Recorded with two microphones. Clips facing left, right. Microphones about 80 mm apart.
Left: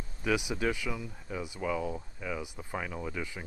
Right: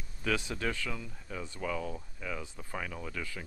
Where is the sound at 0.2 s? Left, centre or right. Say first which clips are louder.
Left 3 dB; centre.